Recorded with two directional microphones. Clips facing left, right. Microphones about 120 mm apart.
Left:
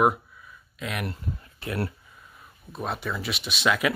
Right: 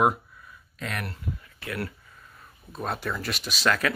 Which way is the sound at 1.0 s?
25° left (ahead or behind).